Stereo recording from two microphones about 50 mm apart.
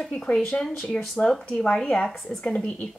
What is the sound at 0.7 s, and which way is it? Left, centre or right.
A woman's voice, left.